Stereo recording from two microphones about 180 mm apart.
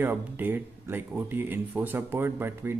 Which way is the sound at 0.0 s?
10° right (ahead or behind).